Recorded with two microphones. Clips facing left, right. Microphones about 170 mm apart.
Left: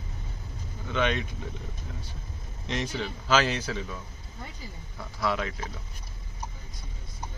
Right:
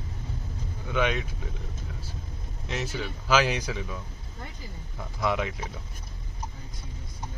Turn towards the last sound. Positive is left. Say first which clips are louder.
# right 1 dB
turn(degrees=-15)  # may be behind; listen again after turning